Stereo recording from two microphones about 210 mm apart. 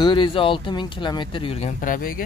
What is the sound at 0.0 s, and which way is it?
Speech, 25° left (ahead or behind).